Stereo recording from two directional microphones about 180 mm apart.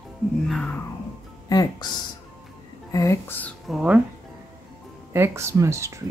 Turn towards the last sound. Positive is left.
turn(degrees=-15)  # may be behind; listen again after turning